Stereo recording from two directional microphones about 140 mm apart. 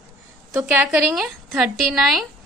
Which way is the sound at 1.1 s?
Centre (ahead or behind).